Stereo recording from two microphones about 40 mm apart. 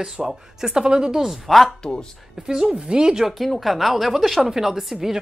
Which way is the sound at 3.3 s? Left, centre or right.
Centre.